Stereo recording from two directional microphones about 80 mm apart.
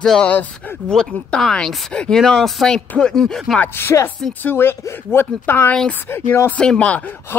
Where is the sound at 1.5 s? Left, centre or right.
Centre.